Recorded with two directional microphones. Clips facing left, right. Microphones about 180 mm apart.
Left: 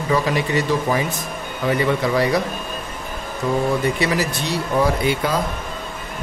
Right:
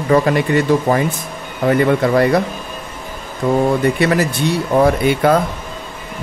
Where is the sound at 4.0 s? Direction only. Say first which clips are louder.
Right 6 dB; 55° right (ahead or behind).